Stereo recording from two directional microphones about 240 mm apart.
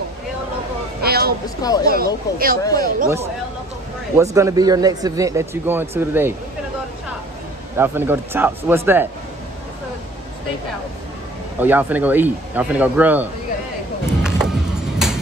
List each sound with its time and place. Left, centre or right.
1.0 s a sound: right
1.6 s speech: centre
1.9 s speech: right
2.6 s speech: centre
4.2 s a man's voice: centre
7.7 s a man's voice: centre
11.6 s a man's voice: centre
14.2 s music: centre